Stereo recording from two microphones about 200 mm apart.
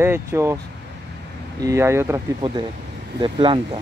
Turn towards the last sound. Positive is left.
turn(degrees=-25)  # may be behind; listen again after turning